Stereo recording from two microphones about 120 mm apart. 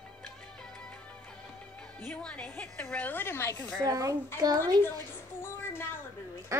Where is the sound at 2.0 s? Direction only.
15° left (ahead or behind).